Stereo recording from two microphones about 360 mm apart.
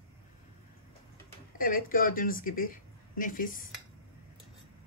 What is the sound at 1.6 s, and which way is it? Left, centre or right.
Speech, left.